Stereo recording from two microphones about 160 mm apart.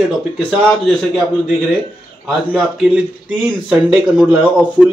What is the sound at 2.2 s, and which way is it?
Speech, 5° right (ahead or behind).